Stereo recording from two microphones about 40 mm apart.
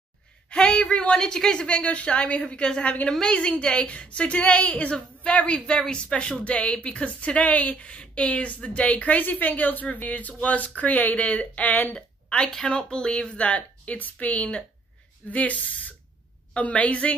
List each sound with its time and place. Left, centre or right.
0.5 s speech: left
1.1 s speech: centre
1.8 s speech: left
9.2 s a woman's voice: left
11.9 s a sound: left
12.6 s speech: left